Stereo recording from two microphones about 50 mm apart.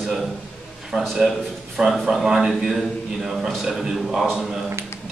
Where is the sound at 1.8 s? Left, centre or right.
Right.